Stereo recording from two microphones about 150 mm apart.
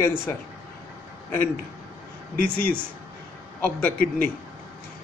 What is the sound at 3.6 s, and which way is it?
Speech, 10° left (ahead or behind).